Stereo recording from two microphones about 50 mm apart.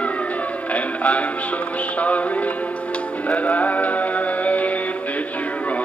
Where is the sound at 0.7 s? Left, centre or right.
Left.